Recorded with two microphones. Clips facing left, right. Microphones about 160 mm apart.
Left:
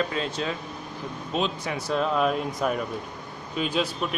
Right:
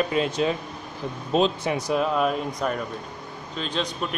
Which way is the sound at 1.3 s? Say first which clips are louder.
Right 6 dB; 35° right (ahead or behind).